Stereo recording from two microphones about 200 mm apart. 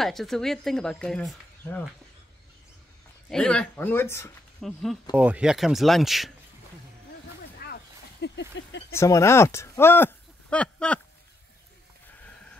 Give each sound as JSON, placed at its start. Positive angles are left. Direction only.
{"t": 0.0, "sound": "speech", "side_deg": 0}
{"t": 3.3, "sound": "speech", "side_deg": 5}
{"t": 4.6, "sound": "speech", "side_deg": 0}
{"t": 7.6, "sound": "a sound", "side_deg": 55}
{"t": 8.9, "sound": "speech", "side_deg": 15}